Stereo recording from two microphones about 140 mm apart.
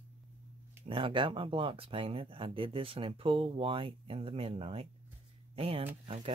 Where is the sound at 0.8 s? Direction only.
40° right (ahead or behind).